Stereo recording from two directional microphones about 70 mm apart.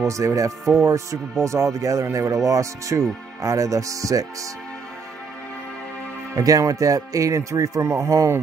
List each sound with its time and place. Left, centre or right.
0.0 s speech: right
6.3 s speech: right